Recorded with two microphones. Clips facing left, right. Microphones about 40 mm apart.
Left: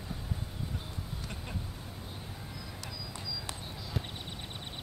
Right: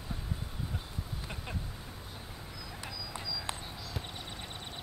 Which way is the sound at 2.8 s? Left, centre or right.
Right.